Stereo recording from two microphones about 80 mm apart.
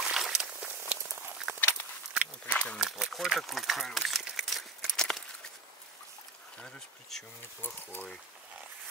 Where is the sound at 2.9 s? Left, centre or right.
Centre.